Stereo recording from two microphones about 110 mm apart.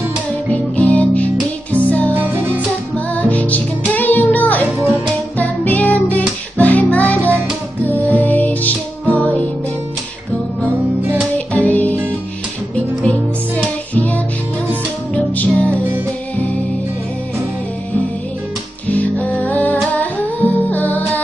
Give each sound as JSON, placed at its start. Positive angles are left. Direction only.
{"t": 0.5, "sound": "music", "side_deg": 10}
{"t": 2.1, "sound": "music", "side_deg": -15}
{"t": 3.2, "sound": "music", "side_deg": 15}
{"t": 4.6, "sound": "music", "side_deg": -15}
{"t": 5.4, "sound": "music", "side_deg": 15}
{"t": 10.6, "sound": "music", "side_deg": -15}
{"t": 11.3, "sound": "music", "side_deg": 15}
{"t": 13.9, "sound": "music", "side_deg": 15}
{"t": 18.9, "sound": "music", "side_deg": 15}